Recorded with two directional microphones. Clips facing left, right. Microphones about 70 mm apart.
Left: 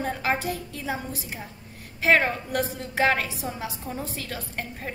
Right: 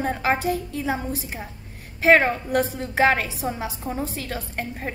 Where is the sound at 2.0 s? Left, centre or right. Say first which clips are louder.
Right 4 dB; right.